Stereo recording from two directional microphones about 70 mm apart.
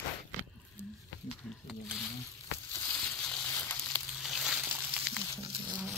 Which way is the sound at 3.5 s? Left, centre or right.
Left.